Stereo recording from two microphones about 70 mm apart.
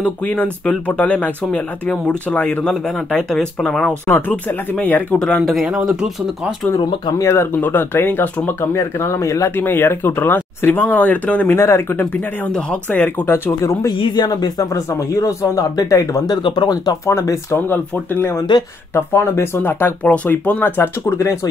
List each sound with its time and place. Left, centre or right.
0.0 s speech: left
2.6 s speech: centre
4.1 s speech: left
5.5 s speech: centre
7.2 s speech: left
9.6 s speech: left
11.5 s speech: left
13.3 s speech: left
13.8 s speech: left
14.9 s speech: left
16.3 s speech: left
17.0 s speech: left
17.6 s speech: left